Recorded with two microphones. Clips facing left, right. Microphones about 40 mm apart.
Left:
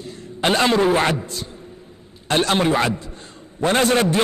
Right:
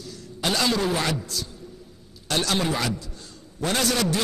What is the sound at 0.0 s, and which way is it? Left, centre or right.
A man's voice, left.